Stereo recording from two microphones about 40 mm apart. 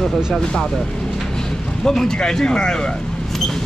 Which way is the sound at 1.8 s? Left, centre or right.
Centre.